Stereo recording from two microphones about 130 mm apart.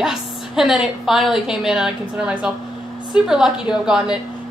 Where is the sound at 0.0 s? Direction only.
5° right (ahead or behind).